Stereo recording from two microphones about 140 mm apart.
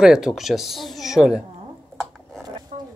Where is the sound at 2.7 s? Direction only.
70° right (ahead or behind).